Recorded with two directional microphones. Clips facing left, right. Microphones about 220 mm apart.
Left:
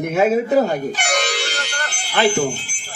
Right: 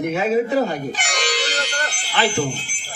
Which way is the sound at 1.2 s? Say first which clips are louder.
Left 1 dB; 45° left (ahead or behind).